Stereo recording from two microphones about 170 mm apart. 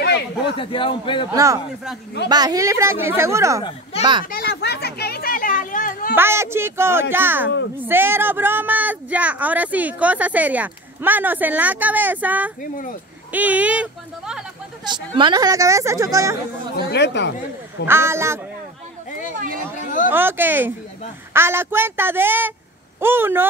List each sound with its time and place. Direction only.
0.0 s a sound: 85° left
0.6 s a man's voice: 30° left (ahead or behind)
1.3 s a woman's voice: 20° right (ahead or behind)
4.0 s a child's voice: 25° right (ahead or behind)
4.3 s chatter: 70° left (ahead or behind); by 6.1 s 55° left (ahead or behind)
6.1 s speech: 15° right (ahead or behind)
14.9 s a woman's voice: 25° right (ahead or behind)
16.7 s speech: 85° left
17.8 s speech: 15° right (ahead or behind)
20.1 s speech: 10° right (ahead or behind)